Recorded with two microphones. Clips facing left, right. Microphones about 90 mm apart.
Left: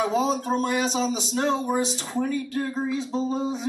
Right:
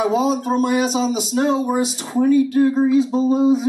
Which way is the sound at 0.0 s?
10° right (ahead or behind).